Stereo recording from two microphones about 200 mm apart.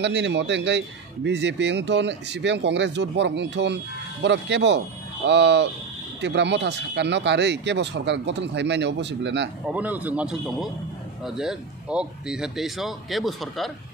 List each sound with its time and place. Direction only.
0.0 s a man's voice: 60° right (ahead or behind)
9.7 s speech: 5° right (ahead or behind)